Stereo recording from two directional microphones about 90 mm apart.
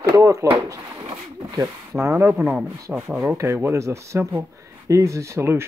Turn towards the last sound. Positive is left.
turn(degrees=-30)  # may be behind; listen again after turning